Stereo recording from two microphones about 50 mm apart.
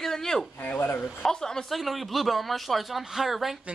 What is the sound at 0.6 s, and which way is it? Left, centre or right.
Speech, left.